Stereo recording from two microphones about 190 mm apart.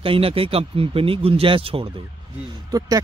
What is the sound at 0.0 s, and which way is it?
Speech, 30° right (ahead or behind).